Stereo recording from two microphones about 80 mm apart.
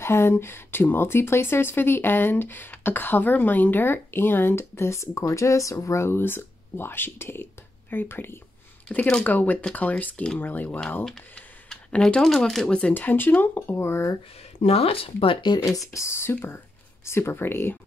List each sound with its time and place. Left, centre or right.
0.0 s speech: left
8.8 s speech: centre
11.7 s a sound: centre
12.2 s speech: centre
12.9 s speech: left
15.2 s speech: left
15.9 s speech: left